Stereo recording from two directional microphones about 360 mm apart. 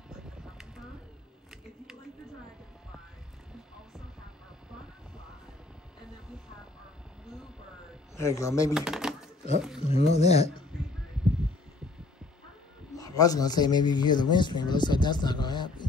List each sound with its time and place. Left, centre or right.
8.2 s a man's voice: centre
8.7 s typewriter: centre
9.8 s a man's voice: centre
12.9 s a man's voice: centre